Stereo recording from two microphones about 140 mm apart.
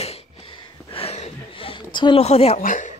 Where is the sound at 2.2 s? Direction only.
50° left (ahead or behind).